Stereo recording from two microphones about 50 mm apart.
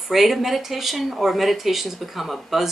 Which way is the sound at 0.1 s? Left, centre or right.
Centre.